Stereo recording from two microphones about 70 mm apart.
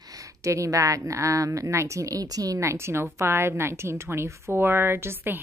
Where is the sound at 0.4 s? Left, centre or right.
Right.